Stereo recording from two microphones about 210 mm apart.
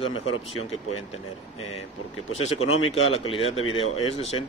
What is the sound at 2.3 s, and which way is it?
Speech, 90° left.